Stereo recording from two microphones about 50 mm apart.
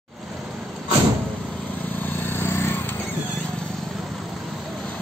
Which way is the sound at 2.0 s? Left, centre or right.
Left.